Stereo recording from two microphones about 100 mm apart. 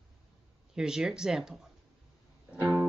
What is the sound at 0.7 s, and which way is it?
Speech, 5° right (ahead or behind).